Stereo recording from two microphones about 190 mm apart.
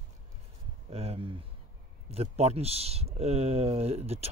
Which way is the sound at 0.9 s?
35° right (ahead or behind).